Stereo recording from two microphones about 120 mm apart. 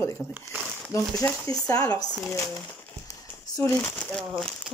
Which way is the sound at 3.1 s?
30° left (ahead or behind).